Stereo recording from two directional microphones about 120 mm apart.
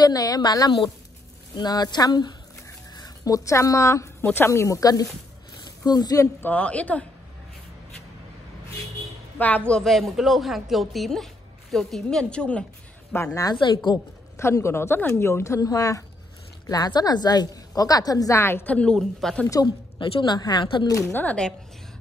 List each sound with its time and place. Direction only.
0.0 s a woman's voice: 30° left (ahead or behind)
6.4 s speech: 10° left (ahead or behind)
9.7 s a woman's voice: 5° left (ahead or behind)
13.1 s a woman's voice: 25° left (ahead or behind); by 19.5 s 5° left (ahead or behind)
20.0 s a woman's voice: 40° left (ahead or behind)
20.8 s a woman's voice: 25° left (ahead or behind)
21.2 s speech: 10° left (ahead or behind)